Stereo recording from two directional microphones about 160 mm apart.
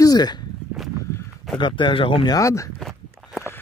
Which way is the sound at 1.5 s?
30° left (ahead or behind).